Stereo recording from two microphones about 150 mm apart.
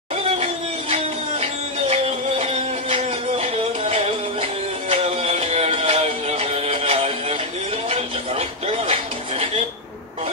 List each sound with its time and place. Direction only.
0.1 s music: 40° right (ahead or behind)